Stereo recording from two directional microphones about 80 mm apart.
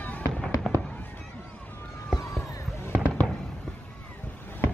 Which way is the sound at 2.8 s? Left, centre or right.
Left.